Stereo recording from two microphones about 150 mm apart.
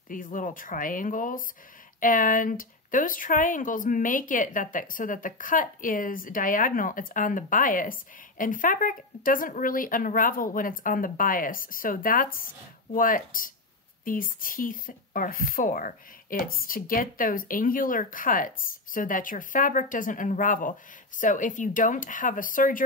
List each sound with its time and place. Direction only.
0.1 s speech: 60° left (ahead or behind)